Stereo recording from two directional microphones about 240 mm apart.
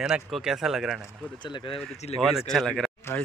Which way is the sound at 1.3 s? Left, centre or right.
Centre.